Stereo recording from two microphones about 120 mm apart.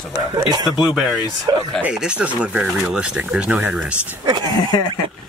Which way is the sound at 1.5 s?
35° right (ahead or behind).